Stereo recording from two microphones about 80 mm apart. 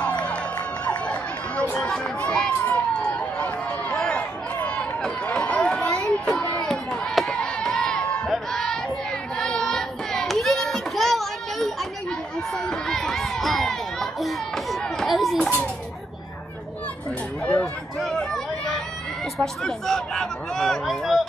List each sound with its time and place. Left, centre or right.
0.0 s music: centre
1.6 s speech: centre
2.6 s run: centre
4.6 s chatter: centre
6.6 s a sound: centre
9.4 s child singing: centre
12.6 s crowd: centre
17.5 s speech: centre
18.0 s chatter: centre
19.3 s speech: centre